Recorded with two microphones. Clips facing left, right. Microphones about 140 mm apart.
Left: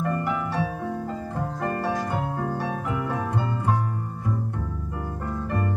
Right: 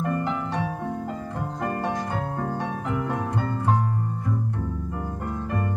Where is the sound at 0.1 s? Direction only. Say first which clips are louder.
Even; 20° right (ahead or behind).